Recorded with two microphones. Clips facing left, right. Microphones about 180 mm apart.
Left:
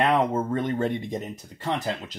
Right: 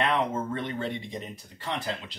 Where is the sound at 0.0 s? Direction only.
40° left (ahead or behind).